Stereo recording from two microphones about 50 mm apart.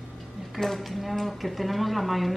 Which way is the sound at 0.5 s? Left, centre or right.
Centre.